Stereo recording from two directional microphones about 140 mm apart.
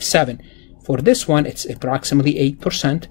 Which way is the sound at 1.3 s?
25° left (ahead or behind).